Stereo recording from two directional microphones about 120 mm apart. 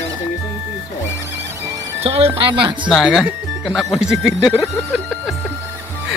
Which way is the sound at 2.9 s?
Centre (ahead or behind).